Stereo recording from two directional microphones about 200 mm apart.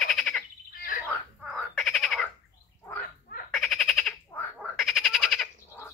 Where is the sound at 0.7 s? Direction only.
45° left (ahead or behind).